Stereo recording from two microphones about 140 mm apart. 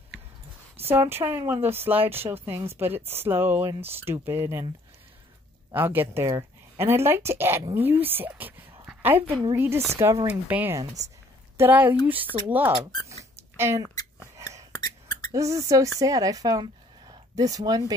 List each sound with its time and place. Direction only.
0.8 s speech: 15° right (ahead or behind)
5.7 s a woman's voice: 15° right (ahead or behind)
10.8 s speech: 25° right (ahead or behind)
11.5 s speech: 15° right (ahead or behind)
13.2 s rodents: 20° right (ahead or behind)
14.3 s a sound: 20° right (ahead or behind)
15.3 s speech: 25° right (ahead or behind)